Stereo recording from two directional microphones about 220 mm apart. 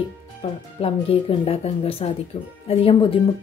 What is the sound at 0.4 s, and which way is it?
Speech, 25° left (ahead or behind).